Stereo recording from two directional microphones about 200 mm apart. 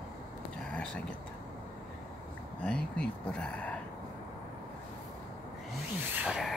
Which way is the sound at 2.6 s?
5° left (ahead or behind).